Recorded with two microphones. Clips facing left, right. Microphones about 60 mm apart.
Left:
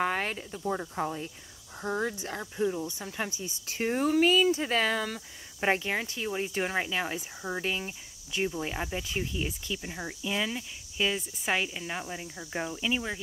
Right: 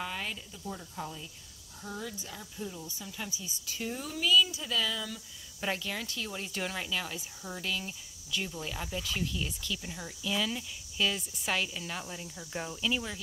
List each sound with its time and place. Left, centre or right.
0.0 s speech: left
5.6 s speech: left